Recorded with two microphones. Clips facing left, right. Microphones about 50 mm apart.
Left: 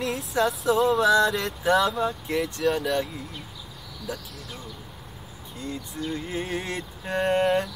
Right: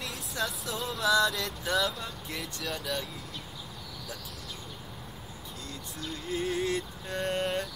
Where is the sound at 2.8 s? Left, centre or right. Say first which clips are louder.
Left 8 dB; centre.